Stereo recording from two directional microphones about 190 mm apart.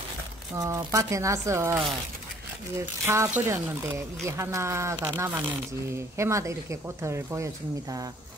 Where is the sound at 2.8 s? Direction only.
15° right (ahead or behind).